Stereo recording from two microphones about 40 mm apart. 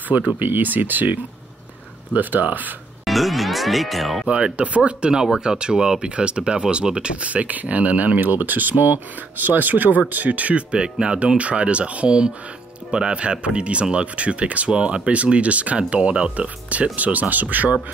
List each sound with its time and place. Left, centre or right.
0.1 s speech: right
3.1 s speech: centre
4.3 s speech: right
5.1 s speech: centre; by 10.6 s right
10.7 s speech: right